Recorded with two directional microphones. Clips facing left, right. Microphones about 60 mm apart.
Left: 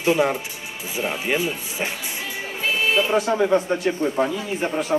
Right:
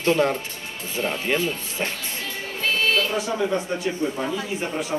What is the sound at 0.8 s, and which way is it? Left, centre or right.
Music, centre.